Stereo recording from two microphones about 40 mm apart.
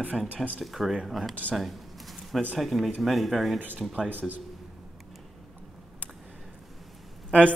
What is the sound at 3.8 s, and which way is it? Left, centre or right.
Speech, centre.